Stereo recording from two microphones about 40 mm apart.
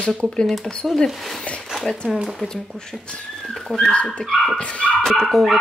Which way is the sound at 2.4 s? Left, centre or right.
Centre.